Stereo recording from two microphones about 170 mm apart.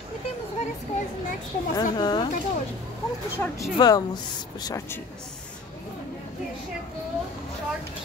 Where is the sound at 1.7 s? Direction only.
25° left (ahead or behind).